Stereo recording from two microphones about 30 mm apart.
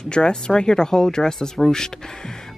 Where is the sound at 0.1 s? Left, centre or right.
Left.